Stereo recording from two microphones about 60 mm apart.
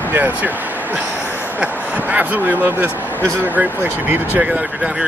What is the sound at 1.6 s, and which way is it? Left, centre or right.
Speech, right.